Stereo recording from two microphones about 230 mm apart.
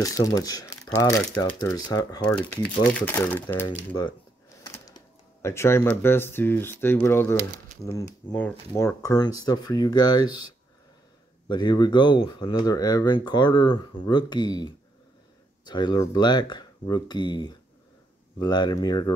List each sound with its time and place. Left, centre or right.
0.0 s speech: centre
3.6 s speech: centre